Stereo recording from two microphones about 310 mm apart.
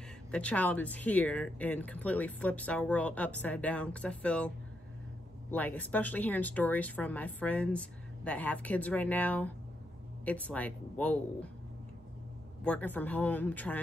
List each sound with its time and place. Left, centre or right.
0.3 s speech: centre
5.5 s speech: centre
12.6 s speech: centre